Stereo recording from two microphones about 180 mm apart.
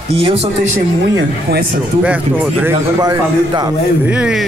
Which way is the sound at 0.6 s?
85° right.